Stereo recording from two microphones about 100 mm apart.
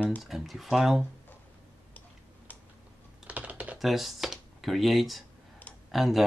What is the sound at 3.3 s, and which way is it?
Typing, 15° right (ahead or behind).